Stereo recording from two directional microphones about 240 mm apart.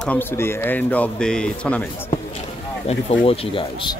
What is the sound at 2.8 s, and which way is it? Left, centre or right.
Speech, left.